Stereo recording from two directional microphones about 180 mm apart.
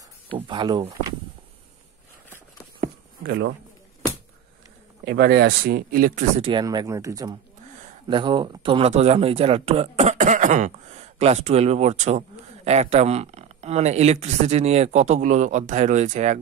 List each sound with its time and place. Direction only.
0.3 s speech: 25° right (ahead or behind)
3.3 s a man's voice: 75° right (ahead or behind)
5.0 s speech: 65° right (ahead or behind); by 6.4 s 45° right (ahead or behind)
6.4 s speech: 25° right (ahead or behind); by 16.3 s 40° right (ahead or behind)